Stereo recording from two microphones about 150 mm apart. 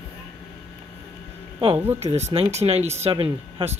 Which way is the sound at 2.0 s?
45° right (ahead or behind).